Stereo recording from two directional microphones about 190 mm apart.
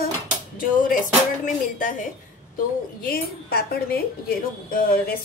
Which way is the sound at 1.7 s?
45° left (ahead or behind).